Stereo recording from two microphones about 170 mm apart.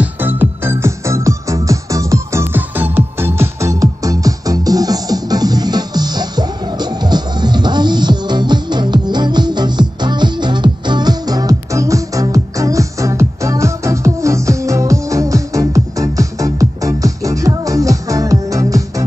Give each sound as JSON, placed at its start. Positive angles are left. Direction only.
{"t": 0.0, "sound": "music", "side_deg": -10}